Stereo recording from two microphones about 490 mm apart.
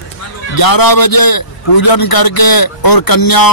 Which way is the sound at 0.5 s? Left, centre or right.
Left.